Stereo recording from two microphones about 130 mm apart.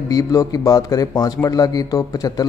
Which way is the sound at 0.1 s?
25° left (ahead or behind).